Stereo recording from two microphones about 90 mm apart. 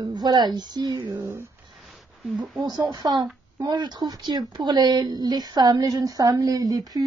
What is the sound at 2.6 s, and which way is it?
Speech, 50° right (ahead or behind).